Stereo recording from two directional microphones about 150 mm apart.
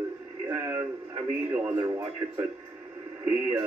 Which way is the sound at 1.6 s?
10° right (ahead or behind).